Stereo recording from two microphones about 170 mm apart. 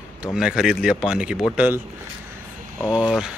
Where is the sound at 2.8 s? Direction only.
5° right (ahead or behind).